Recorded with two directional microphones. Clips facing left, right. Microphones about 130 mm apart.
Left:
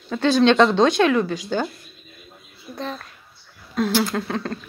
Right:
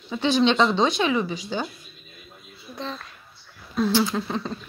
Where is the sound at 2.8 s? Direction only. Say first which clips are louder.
Left 3 dB; 50° left (ahead or behind).